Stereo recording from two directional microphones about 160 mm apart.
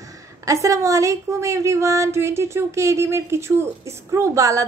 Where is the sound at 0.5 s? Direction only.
20° right (ahead or behind).